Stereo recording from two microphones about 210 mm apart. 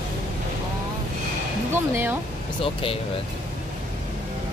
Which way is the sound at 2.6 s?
25° left (ahead or behind).